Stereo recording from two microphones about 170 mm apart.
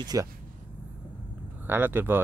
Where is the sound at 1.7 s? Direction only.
10° right (ahead or behind).